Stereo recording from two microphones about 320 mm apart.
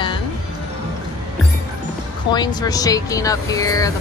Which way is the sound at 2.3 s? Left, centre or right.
Centre.